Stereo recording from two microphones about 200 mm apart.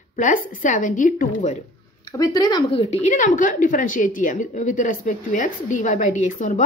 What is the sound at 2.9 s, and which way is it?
Speech, 35° left (ahead or behind).